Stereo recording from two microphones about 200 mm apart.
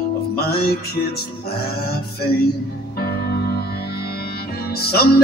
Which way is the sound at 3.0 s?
50° left (ahead or behind).